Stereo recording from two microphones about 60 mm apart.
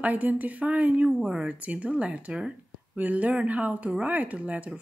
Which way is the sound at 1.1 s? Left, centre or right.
Centre.